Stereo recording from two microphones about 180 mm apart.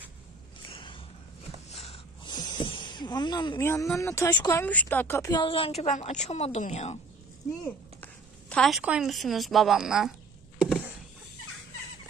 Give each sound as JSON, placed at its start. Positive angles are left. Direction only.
{"t": 0.7, "sound": "a sound", "side_deg": 30}
{"t": 3.6, "sound": "speech", "side_deg": 15}
{"t": 5.3, "sound": "a woman's voice", "side_deg": 25}
{"t": 7.6, "sound": "a woman's voice", "side_deg": 5}